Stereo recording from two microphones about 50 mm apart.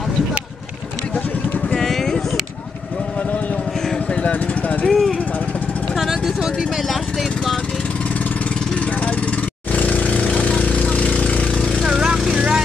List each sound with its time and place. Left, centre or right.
1.8 s vehicle: centre
4.8 s speech: centre
5.9 s vehicle: centre
9.7 s lawn mower: left
10.4 s jackhammer: left
11.5 s a sound: centre
11.8 s vehicle: centre